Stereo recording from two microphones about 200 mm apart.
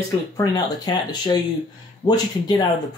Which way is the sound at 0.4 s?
20° left (ahead or behind).